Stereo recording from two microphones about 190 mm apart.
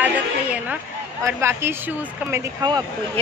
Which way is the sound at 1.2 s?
15° right (ahead or behind).